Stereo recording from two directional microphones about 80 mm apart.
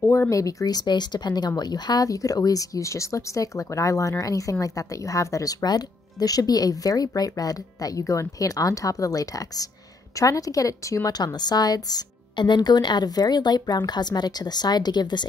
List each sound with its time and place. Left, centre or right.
0.0 s speech: left
11.3 s speech: left